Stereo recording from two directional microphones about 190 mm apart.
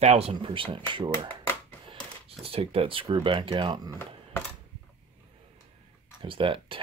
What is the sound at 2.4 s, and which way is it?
Speech, 30° right (ahead or behind).